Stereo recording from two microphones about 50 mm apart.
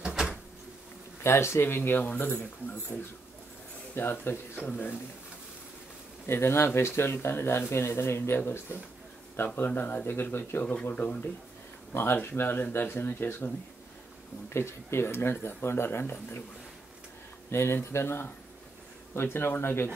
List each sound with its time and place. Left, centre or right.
0.0 s a sound: centre
1.2 s speech: left
4.6 s speech: left
6.2 s speech: left
10.6 s speech: left
11.9 s speech: left
14.5 s speech: left
17.5 s speech: left